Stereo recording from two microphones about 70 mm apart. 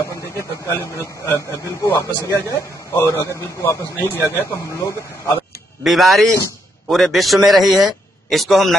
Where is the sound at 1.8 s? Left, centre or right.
Left.